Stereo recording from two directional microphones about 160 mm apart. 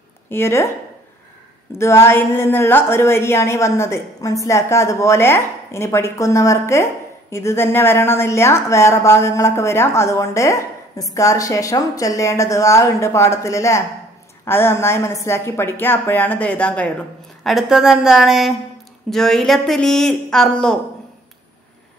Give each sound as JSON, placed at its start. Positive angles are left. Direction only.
{"t": 0.3, "sound": "a woman's voice", "side_deg": 15}
{"t": 1.8, "sound": "a woman's voice", "side_deg": 15}